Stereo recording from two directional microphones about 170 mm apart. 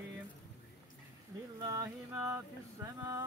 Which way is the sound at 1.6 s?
20° right (ahead or behind).